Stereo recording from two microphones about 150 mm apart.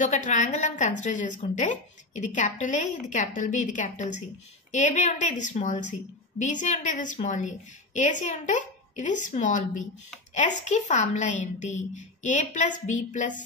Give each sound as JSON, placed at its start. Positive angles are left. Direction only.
{"t": 0.0, "sound": "a woman's voice", "side_deg": 55}